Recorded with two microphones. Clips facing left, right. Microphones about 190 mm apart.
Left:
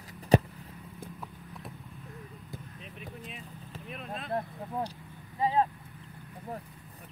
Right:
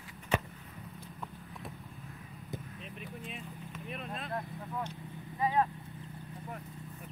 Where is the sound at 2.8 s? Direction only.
Centre (ahead or behind).